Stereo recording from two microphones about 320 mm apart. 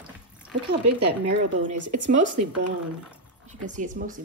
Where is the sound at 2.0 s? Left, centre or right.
Right.